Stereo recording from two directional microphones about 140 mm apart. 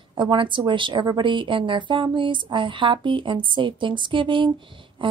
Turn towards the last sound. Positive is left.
turn(degrees=-35)  # may be behind; listen again after turning